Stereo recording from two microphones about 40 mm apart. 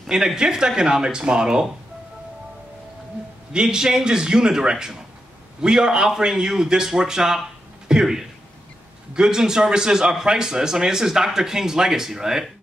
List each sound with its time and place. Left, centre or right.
0.4 s speech: centre
3.6 s a man's voice: centre